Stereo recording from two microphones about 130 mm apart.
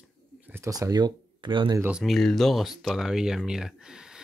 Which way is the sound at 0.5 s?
25° right (ahead or behind).